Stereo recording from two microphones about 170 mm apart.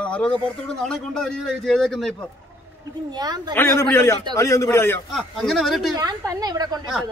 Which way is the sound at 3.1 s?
25° right (ahead or behind).